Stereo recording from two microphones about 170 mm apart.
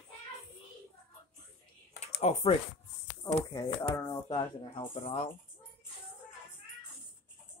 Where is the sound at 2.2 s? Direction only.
35° left (ahead or behind).